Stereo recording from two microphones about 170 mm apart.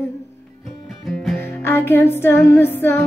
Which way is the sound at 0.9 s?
Centre (ahead or behind).